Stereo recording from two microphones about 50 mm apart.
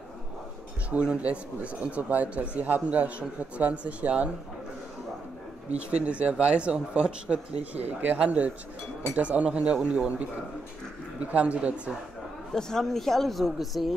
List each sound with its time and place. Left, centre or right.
0.8 s speech: right
5.8 s speech: right
11.3 s speech: right
12.5 s speech: centre